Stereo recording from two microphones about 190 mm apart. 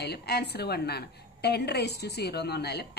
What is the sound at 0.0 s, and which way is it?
A woman's voice, 60° left (ahead or behind).